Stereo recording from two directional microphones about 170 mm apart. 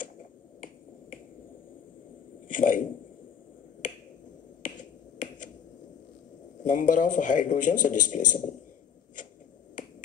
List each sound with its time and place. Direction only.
2.4 s a sound: 50° left (ahead or behind)
4.6 s finger snapping: 50° left (ahead or behind)
6.6 s speech: 50° left (ahead or behind)